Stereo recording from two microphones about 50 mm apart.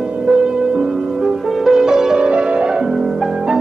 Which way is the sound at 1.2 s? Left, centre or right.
Centre.